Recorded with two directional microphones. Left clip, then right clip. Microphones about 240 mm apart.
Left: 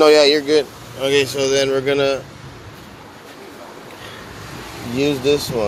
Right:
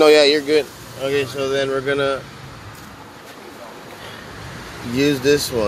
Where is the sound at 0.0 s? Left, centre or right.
Centre.